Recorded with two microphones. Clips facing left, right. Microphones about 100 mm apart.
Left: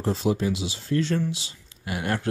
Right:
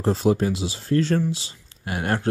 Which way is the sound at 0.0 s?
40° right (ahead or behind).